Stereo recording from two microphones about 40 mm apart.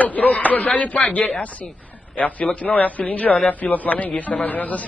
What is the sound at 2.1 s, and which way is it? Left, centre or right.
A man's voice, left.